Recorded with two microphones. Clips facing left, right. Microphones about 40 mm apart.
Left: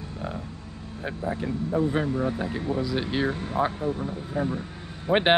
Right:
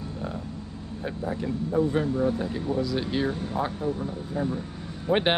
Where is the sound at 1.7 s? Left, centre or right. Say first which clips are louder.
Right 1 dB; centre.